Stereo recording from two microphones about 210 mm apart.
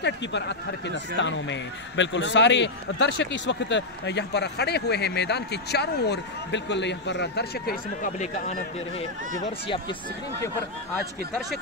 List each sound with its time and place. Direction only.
0.0 s speech: 55° left (ahead or behind); by 9.5 s 35° left (ahead or behind)